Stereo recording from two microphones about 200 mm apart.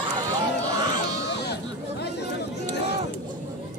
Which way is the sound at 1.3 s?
55° left (ahead or behind).